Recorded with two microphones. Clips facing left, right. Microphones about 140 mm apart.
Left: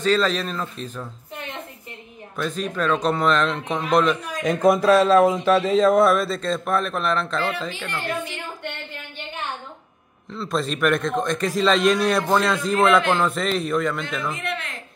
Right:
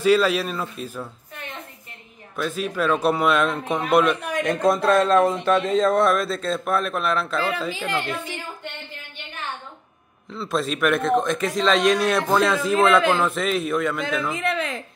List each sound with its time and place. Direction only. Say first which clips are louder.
0.0 s speech: right 2 dB; 10° right (ahead or behind)
2.3 s a man's voice: right 1 dB; 5° right (ahead or behind)
10.3 s a man's voice: even; centre (ahead or behind)